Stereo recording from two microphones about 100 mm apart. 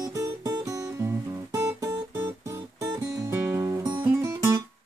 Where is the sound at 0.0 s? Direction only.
35° right (ahead or behind).